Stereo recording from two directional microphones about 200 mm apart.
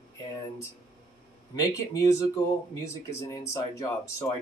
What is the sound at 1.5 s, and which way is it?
Speech, 15° left (ahead or behind).